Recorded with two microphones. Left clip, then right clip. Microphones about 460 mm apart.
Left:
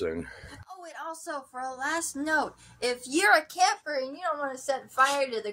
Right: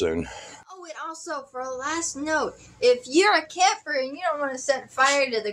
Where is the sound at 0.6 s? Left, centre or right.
Left.